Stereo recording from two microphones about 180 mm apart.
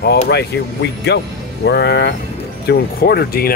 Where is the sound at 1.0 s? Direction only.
70° left (ahead or behind).